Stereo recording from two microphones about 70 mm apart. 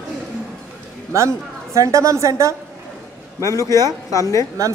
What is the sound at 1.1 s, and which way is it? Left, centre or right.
A woman's voice, right.